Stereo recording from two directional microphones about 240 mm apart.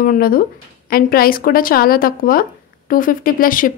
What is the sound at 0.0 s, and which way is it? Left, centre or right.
A woman's voice, left.